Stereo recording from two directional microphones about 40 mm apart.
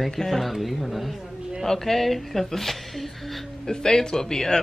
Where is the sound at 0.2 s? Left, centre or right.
Centre.